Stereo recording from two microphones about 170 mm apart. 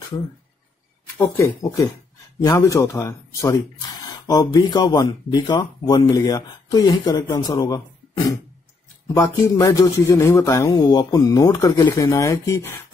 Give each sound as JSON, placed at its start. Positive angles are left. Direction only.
{"t": 1.3, "sound": "speech", "side_deg": 20}
{"t": 9.0, "sound": "speech", "side_deg": 20}